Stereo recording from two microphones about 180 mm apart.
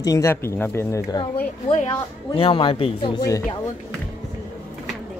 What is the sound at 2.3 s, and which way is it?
Speech, 30° left (ahead or behind).